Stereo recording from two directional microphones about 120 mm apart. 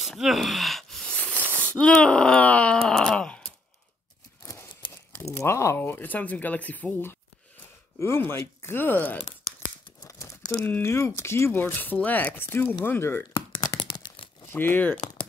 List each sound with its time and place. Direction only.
0.0 s wail: centre (ahead or behind)
1.1 s a sound: 15° left (ahead or behind)
1.6 s groan: 15° left (ahead or behind)
5.1 s speech: 25° left (ahead or behind)
10.0 s crumpling: 25° left (ahead or behind)
10.6 s speech: 20° left (ahead or behind)
13.7 s tearing: 40° left (ahead or behind)
14.5 s speech: 15° left (ahead or behind)